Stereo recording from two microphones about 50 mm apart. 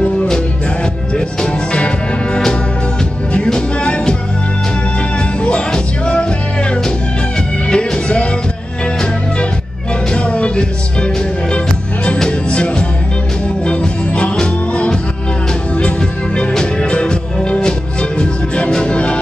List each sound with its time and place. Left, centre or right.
1.1 s music: centre
3.4 s music: centre
5.4 s music: centre
7.7 s music: left
10.1 s music: left
16.3 s music: centre